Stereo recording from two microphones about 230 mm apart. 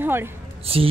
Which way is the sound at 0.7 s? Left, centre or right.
Right.